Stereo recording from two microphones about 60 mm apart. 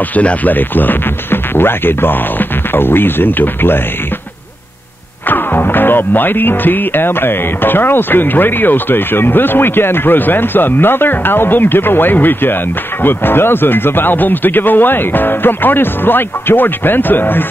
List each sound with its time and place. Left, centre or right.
0.1 s speech: left
5.3 s speech: left